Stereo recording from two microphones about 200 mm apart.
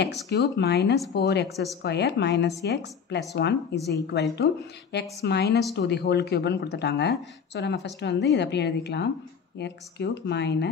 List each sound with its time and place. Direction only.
0.3 s speech: 55° left (ahead or behind)